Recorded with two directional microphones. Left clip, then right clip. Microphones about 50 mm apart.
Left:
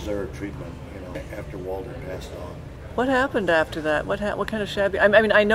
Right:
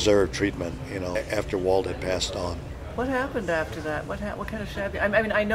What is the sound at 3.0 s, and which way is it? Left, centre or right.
Speech, left.